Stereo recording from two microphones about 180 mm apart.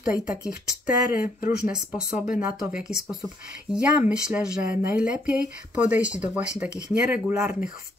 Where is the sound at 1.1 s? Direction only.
55° left (ahead or behind).